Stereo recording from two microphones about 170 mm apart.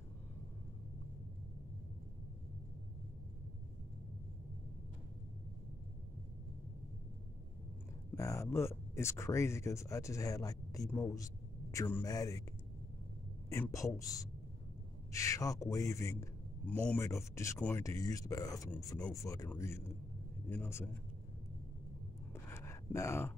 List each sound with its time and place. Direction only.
8.1 s speech: 20° left (ahead or behind)
13.5 s speech: 15° left (ahead or behind)
22.3 s a sound: 15° left (ahead or behind)